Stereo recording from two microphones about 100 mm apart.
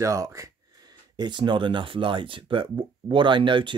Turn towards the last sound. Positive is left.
turn(degrees=-55)  # may be behind; listen again after turning